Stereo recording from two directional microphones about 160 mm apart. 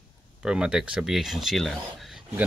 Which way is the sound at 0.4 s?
5° right (ahead or behind).